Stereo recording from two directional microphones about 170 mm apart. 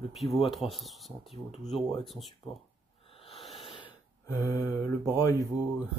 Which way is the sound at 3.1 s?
35° left (ahead or behind).